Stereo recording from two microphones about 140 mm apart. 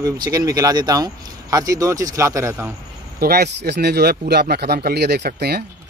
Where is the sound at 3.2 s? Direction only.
90° right.